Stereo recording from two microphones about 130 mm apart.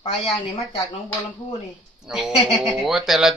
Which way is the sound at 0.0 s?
50° left (ahead or behind).